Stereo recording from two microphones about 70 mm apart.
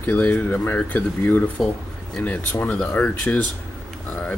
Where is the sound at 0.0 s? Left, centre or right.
Left.